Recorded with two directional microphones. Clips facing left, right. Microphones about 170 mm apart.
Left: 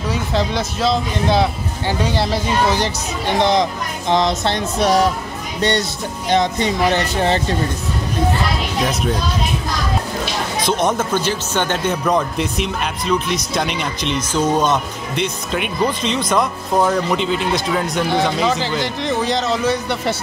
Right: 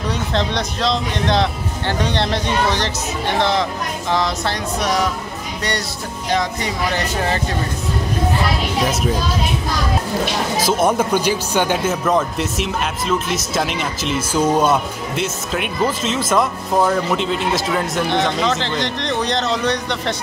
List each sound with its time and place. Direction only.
0.1 s speech: 5° left (ahead or behind); by 7.4 s 25° left (ahead or behind)
8.8 s speech: centre (ahead or behind)
10.6 s speech: 5° right (ahead or behind)